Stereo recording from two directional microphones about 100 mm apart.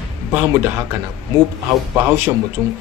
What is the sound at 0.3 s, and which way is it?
Speech, 20° right (ahead or behind).